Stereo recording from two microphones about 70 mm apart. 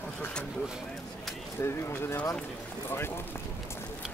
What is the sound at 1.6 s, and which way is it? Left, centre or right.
Speech, left.